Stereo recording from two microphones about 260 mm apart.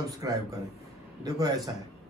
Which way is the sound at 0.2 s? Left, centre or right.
Centre.